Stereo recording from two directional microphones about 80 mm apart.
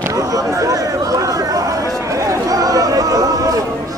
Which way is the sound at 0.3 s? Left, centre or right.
Right.